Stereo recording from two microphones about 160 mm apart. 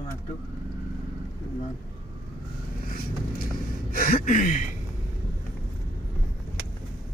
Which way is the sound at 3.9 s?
65° left (ahead or behind).